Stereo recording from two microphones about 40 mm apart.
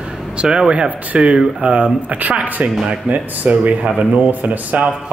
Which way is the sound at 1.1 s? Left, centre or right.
Right.